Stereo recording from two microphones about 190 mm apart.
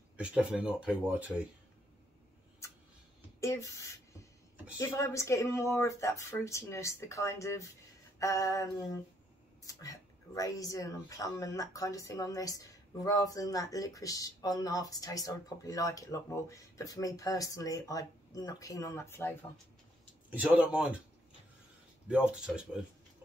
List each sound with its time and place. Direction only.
0.2 s speech: 5° right (ahead or behind)
3.3 s speech: 15° left (ahead or behind)
4.7 s speech: 15° left (ahead or behind)
20.2 s a man's voice: 5° right (ahead or behind)
22.0 s speech: 5° right (ahead or behind)